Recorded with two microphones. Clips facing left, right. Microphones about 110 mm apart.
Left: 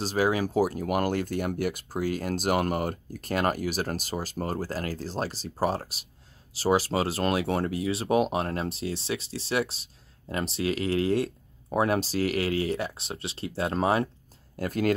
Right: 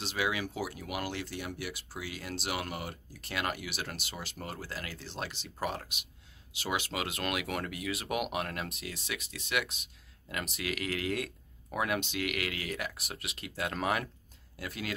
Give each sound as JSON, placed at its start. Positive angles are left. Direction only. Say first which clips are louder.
{"t": 0.0, "sound": "speech", "louder": "left 8 dB", "side_deg": 40}
{"t": 14.6, "sound": "speech", "louder": "left 13 dB", "side_deg": 45}